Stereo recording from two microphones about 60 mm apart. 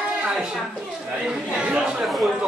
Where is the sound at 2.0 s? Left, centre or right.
Centre.